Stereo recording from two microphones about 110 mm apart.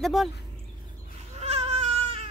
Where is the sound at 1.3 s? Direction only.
75° right (ahead or behind).